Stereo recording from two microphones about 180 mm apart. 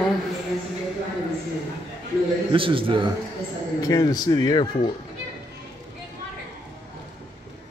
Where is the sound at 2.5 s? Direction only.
30° right (ahead or behind).